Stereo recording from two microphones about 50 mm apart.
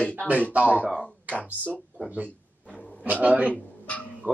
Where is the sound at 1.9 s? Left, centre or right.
Right.